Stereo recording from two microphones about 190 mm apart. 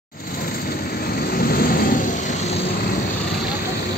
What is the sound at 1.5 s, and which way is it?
Vehicle, 50° left (ahead or behind).